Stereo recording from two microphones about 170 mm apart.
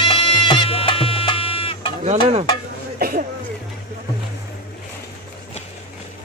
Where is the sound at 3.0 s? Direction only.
55° right (ahead or behind).